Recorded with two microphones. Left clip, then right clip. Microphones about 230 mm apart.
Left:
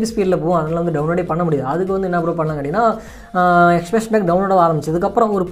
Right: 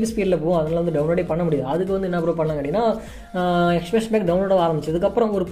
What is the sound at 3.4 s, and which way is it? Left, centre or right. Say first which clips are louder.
Speech: left 8 dB; left.